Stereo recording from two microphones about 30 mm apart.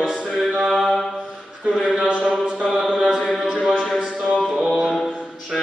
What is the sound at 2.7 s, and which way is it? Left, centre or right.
Chant, right.